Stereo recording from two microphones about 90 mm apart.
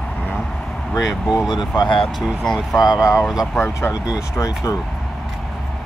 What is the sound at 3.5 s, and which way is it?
Speech, 25° left (ahead or behind).